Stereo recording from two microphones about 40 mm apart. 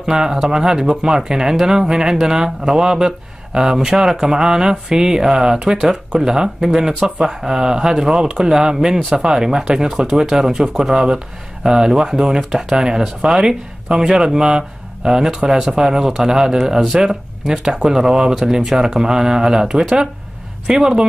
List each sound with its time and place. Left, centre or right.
0.0 s speech: centre
5.8 s speech: centre
6.2 s speech: centre